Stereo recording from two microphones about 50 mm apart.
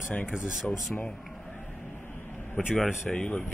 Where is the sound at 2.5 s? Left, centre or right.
Left.